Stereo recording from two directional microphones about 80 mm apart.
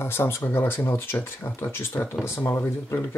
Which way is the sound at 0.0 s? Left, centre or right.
Left.